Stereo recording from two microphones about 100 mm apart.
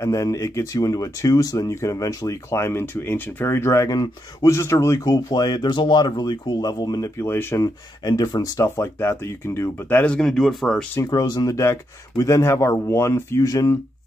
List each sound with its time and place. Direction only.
0.0 s speech: 35° left (ahead or behind)
7.2 s speech: 25° left (ahead or behind)
8.0 s speech: 45° left (ahead or behind)
8.5 s speech: 25° left (ahead or behind); by 10.9 s 5° left (ahead or behind)
11.0 s speech: 40° left (ahead or behind)